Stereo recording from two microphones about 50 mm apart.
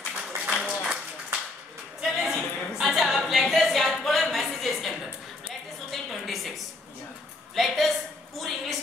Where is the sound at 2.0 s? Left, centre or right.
Centre.